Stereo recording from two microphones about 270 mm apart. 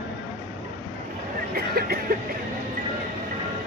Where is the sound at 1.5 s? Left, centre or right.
Right.